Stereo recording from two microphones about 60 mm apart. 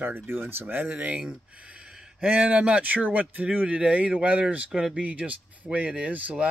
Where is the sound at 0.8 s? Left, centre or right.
Right.